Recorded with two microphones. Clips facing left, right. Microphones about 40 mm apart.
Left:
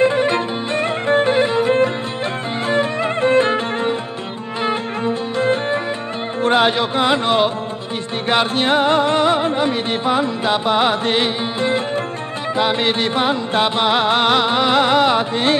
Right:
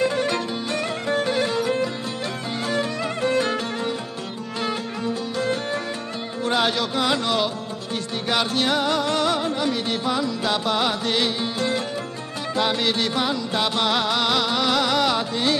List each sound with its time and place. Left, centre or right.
0.0 s music: left